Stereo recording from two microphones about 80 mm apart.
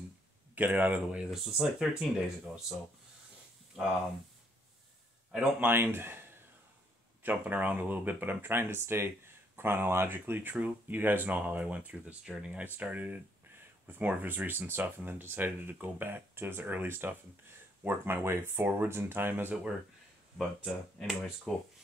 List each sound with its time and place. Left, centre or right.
0.6 s speech: right
1.3 s speech: centre
3.8 s speech: centre
5.6 s speech: right
7.2 s speech: right
20.3 s speech: centre